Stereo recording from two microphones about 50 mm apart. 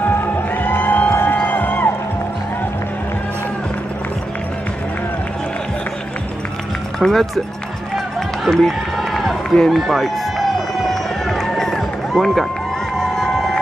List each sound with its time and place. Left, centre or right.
0.0 s music: left
7.0 s speech: centre
8.5 s run: centre
9.7 s speech: centre
10.9 s run: centre
13.0 s a sound: centre